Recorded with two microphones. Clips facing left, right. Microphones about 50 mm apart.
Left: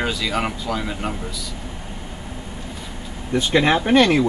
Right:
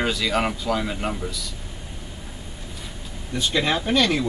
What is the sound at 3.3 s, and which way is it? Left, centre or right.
Speech, left.